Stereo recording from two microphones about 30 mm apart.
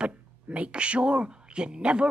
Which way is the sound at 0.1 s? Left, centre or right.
Right.